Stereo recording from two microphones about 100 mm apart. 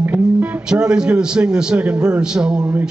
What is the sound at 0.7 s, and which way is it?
A man's voice, 5° right (ahead or behind).